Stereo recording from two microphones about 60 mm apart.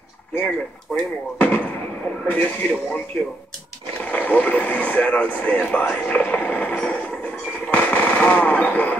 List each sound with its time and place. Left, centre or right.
0.9 s speech: centre
2.2 s speech: left
4.0 s speech: left
7.6 s machine gun: left